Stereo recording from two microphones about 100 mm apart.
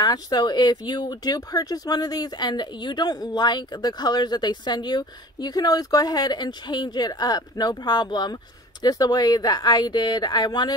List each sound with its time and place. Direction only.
0.0 s speech: 40° left (ahead or behind)